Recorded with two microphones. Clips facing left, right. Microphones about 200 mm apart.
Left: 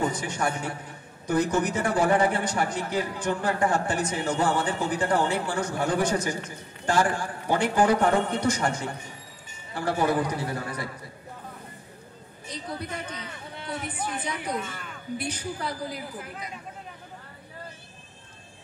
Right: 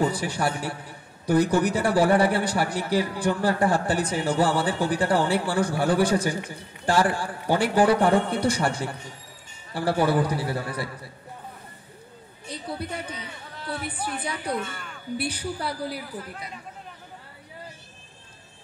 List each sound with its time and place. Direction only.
0.1 s a man's voice: 35° right (ahead or behind)
14.0 s speech: 5° right (ahead or behind)
15.3 s a man's voice: 30° right (ahead or behind)